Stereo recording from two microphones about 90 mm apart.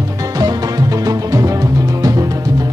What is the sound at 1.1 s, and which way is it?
Music, 40° right (ahead or behind).